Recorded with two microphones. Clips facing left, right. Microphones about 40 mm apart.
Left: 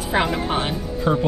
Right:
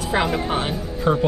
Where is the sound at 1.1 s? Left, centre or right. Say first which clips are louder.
Right 1 dB; centre.